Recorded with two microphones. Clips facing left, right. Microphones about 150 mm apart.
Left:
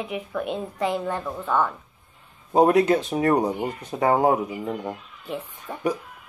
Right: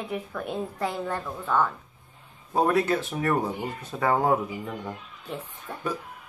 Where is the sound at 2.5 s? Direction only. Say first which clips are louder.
Left 6 dB; 20° left (ahead or behind).